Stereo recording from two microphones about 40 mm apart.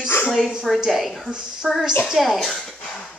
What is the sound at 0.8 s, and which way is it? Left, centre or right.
A woman's voice, centre.